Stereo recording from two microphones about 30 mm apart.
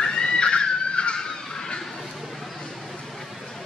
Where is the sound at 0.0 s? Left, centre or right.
Left.